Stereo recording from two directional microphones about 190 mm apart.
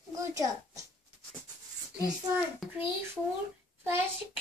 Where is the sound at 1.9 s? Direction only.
5° right (ahead or behind).